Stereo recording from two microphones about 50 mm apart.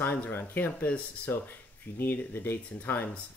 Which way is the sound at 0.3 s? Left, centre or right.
Left.